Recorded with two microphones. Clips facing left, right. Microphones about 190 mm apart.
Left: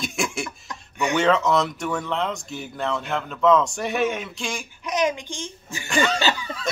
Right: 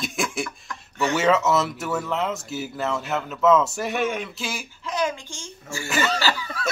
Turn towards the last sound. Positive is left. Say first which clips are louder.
# left 1 dB
turn(degrees=20)  # may be behind; listen again after turning